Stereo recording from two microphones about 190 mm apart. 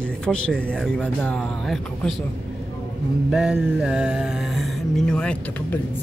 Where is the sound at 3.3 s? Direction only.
Centre (ahead or behind).